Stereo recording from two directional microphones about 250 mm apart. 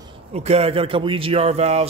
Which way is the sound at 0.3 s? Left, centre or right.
Right.